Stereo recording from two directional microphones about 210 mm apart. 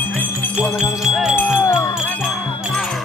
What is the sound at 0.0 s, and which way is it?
Wind chime, 10° left (ahead or behind).